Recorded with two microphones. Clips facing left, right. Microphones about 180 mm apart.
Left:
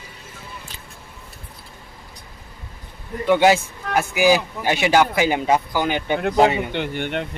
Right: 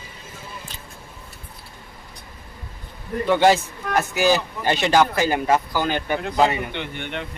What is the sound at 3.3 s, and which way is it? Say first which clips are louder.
A man's voice: left 1 dB; 10° left (ahead or behind).